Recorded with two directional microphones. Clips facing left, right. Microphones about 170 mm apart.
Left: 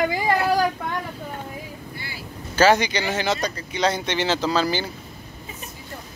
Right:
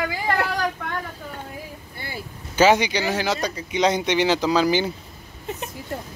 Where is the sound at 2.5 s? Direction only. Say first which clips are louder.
Right 1 dB; 15° right (ahead or behind).